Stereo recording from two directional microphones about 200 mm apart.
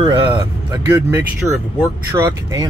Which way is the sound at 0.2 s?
10° right (ahead or behind).